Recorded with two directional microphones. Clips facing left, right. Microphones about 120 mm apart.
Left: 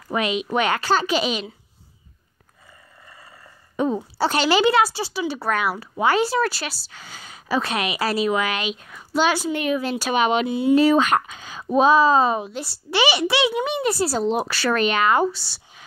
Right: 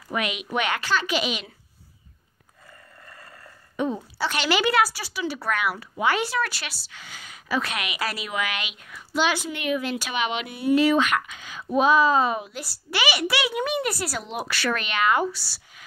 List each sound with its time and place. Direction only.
0.1 s speech: 30° left (ahead or behind)
3.1 s a sound: 10° left (ahead or behind)
3.7 s a woman's voice: 35° left (ahead or behind)
10.5 s speech: 30° left (ahead or behind)
15.3 s speech: 25° left (ahead or behind)